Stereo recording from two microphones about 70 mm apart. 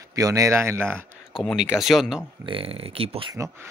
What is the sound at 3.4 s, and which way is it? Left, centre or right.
Speech, right.